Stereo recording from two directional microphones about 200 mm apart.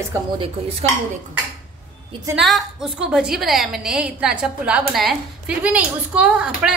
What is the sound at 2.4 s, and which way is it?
A woman's voice, centre (ahead or behind).